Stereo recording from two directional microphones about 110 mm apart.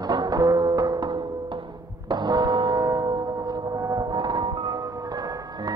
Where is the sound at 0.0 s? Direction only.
40° right (ahead or behind).